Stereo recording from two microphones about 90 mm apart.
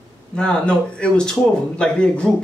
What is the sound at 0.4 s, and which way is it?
Speech, 10° left (ahead or behind).